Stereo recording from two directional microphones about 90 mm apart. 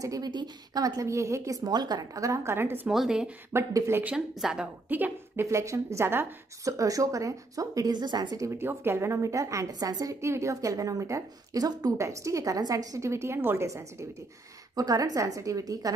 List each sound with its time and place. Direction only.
0.0 s a woman's voice: 40° right (ahead or behind); by 2.9 s 25° right (ahead or behind)
2.9 s speech: 5° right (ahead or behind)
3.5 s a woman's voice: 30° right (ahead or behind)
4.4 s a woman's voice: 5° right (ahead or behind)
4.8 s a woman's voice: 20° right (ahead or behind)
6.8 s a woman's voice: 40° right (ahead or behind)
8.4 s a woman's voice: 30° right (ahead or behind)
14.8 s a woman's voice: 45° right (ahead or behind)